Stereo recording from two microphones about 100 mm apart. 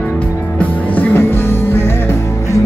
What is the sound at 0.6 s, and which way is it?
Music, 15° left (ahead or behind).